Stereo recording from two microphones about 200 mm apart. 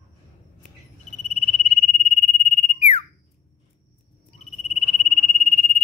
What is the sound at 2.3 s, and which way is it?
Sine wave, 35° left (ahead or behind).